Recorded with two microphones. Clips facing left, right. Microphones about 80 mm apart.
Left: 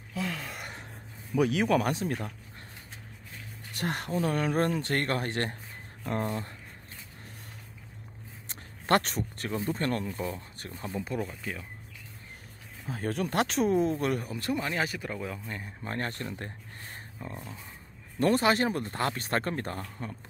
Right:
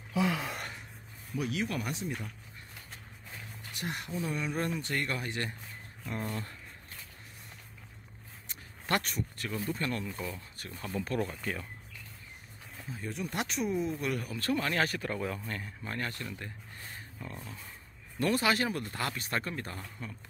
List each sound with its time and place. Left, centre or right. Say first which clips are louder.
0.1 s gasp: right 4 dB; centre
1.8 s speech: left 7 dB; left
3.7 s speech: left 6 dB; left
6.2 s speech: left 4 dB; left
8.8 s speech: left 6 dB; left
10.8 s speech: left 1 dB; centre
11.1 s speech: right 1 dB; centre
12.8 s speech: left 7 dB; left
13.7 s speech: left 6 dB; left
14.2 s speech: even; left; by 15.4 s centre
15.4 s speech: even; centre
15.8 s speech: left 5 dB; left